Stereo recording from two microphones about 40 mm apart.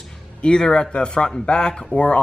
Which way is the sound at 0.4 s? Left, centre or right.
Left.